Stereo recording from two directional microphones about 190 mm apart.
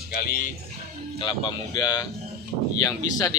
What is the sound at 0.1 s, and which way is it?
Speech, 55° left (ahead or behind).